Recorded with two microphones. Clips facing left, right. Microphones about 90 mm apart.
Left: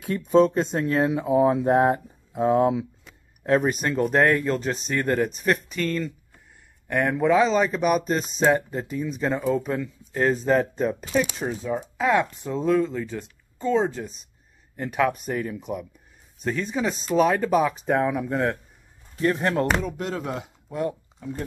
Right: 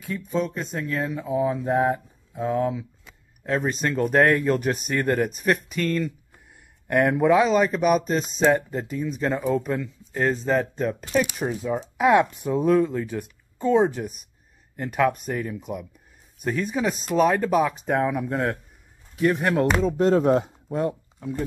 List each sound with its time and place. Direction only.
0.0 s speech: 75° left (ahead or behind)
3.4 s speech: 15° left (ahead or behind)
3.7 s speech: 5° left (ahead or behind)
11.8 s speech: 15° right (ahead or behind)
14.8 s speech: centre (ahead or behind)
19.8 s speech: 30° right (ahead or behind)
20.7 s speech: 25° right (ahead or behind)